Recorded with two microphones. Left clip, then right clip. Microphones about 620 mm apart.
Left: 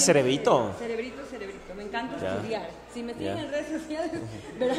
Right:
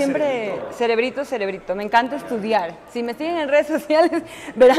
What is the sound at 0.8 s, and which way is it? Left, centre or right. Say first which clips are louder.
A woman's voice: right 14 dB; right.